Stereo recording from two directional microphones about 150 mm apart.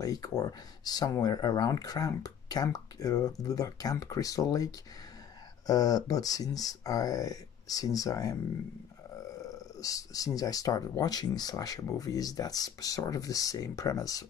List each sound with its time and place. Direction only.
0.0 s speech: 25° left (ahead or behind)
9.4 s speech: 25° left (ahead or behind)